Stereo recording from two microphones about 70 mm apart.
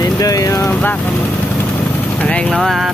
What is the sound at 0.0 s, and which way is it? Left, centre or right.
Vehicle, left.